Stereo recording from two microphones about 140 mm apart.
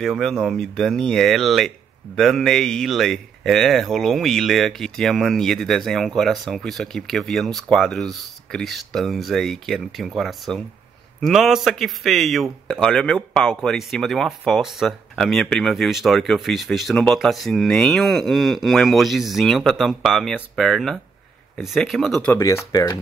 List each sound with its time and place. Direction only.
0.0 s speech: centre (ahead or behind)
22.3 s speech: 20° left (ahead or behind)